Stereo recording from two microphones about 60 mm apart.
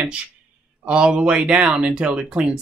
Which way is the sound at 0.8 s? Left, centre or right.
Centre.